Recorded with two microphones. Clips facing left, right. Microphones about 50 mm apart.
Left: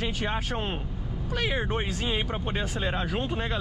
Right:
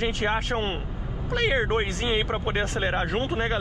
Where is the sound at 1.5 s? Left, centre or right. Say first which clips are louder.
Right 5 dB; right.